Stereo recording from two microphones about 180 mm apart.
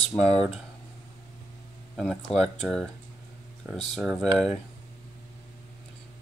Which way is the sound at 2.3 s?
35° left (ahead or behind).